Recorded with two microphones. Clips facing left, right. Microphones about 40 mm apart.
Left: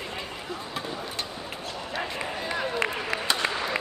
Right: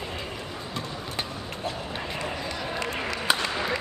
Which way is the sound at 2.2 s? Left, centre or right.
Left.